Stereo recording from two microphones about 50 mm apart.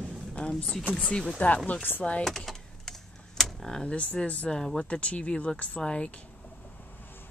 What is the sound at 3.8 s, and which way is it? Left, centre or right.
Speech, left.